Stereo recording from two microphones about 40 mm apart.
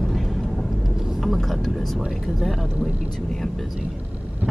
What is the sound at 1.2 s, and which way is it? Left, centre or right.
Speech, centre.